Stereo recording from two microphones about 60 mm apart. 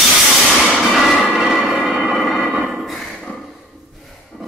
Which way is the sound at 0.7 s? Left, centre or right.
Centre.